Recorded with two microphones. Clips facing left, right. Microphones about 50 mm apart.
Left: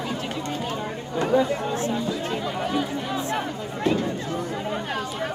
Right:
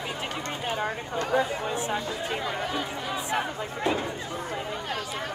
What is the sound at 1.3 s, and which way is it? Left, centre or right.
Speech, right.